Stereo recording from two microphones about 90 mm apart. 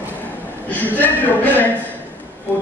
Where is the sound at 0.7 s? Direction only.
20° left (ahead or behind).